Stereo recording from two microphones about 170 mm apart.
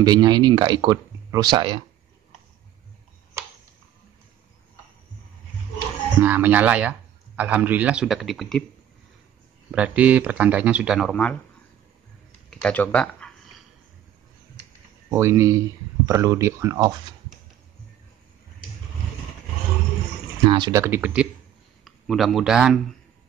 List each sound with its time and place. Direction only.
0.0 s speech: 25° right (ahead or behind)
6.2 s speech: 10° right (ahead or behind)
9.7 s speech: 10° right (ahead or behind)
12.4 s a sound: 10° left (ahead or behind)
15.0 s speech: 15° right (ahead or behind)
20.4 s speech: 30° right (ahead or behind)
20.8 s speech: 10° right (ahead or behind)